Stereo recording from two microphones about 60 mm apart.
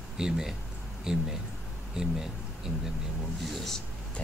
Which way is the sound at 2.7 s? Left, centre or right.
Centre.